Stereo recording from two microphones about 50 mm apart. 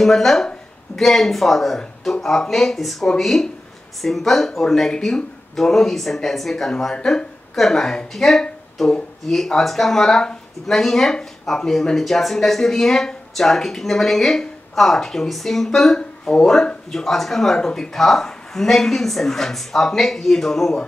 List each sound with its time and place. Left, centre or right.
0.0 s speech: centre
7.0 s speech: centre
7.5 s speech: centre